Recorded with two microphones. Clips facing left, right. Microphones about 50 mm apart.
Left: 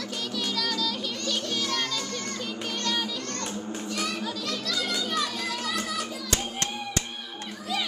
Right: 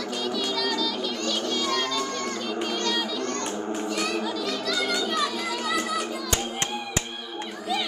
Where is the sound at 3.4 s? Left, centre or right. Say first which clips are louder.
Right 5 dB; right.